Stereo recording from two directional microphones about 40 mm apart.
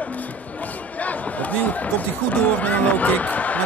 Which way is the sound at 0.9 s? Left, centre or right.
Left.